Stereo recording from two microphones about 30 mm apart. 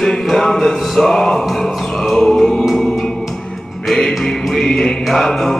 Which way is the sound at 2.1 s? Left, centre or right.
Centre.